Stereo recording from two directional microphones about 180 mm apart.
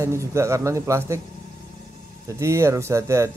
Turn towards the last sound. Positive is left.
turn(degrees=-15)  # may be behind; listen again after turning